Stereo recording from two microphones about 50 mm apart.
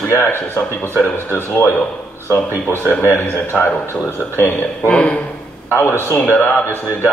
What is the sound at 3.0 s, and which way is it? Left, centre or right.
Speech, left.